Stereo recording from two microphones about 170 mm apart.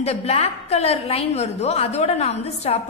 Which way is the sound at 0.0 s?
40° left (ahead or behind).